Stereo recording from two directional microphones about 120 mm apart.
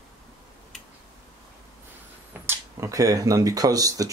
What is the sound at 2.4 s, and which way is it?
Speech, 25° right (ahead or behind).